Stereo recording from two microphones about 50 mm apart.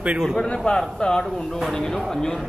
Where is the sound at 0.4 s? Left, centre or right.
Centre.